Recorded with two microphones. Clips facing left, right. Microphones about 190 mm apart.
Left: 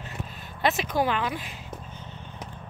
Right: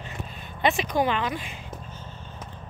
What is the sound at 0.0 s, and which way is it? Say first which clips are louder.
Vehicle: even; centre (ahead or behind).